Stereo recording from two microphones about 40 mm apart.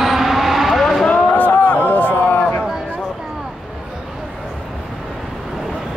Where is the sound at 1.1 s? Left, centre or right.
Left.